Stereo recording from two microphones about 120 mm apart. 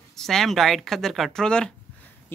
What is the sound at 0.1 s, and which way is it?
Speech, 5° left (ahead or behind).